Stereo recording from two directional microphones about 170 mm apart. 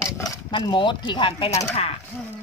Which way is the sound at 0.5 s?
30° left (ahead or behind).